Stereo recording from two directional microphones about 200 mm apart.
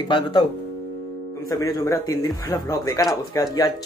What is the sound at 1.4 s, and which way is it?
A man's voice, 20° left (ahead or behind).